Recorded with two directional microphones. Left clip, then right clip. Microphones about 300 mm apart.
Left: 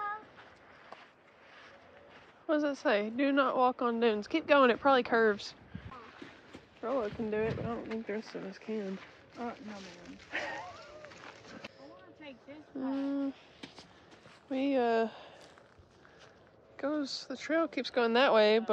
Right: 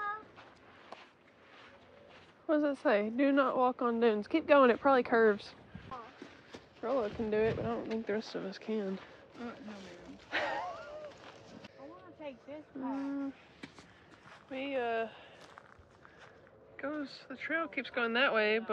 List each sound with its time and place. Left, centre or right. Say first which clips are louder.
2.4 s a woman's voice: even; centre
6.8 s speech: even; centre
9.8 s a sound: left 2 dB; centre
13.1 s speech: left 4 dB; centre
16.7 s speech: left 5 dB; centre